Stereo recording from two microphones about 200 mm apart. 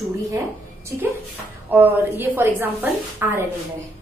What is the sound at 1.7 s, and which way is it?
A woman's voice, 10° right (ahead or behind).